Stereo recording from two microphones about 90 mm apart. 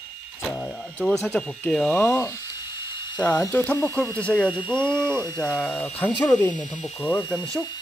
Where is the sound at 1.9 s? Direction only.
25° left (ahead or behind).